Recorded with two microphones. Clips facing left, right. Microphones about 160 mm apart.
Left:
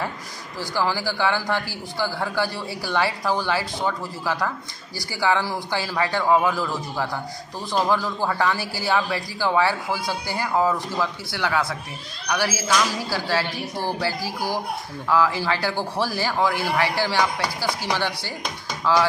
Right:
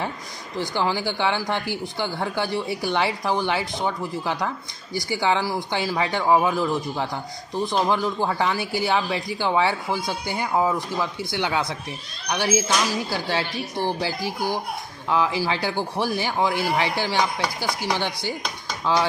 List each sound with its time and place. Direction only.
0.6 s a woman's voice: 20° right (ahead or behind)